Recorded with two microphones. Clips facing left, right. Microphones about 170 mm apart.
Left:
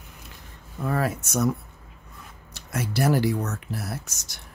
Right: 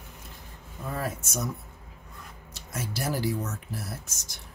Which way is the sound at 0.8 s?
70° left (ahead or behind).